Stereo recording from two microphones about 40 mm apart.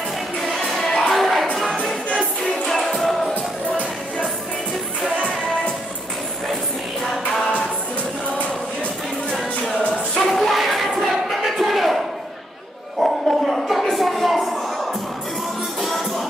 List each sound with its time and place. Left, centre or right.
0.4 s music: centre
2.1 s music: centre
2.8 s music: centre
9.4 s music: centre
11.0 s a sound: centre
13.0 s a sound: centre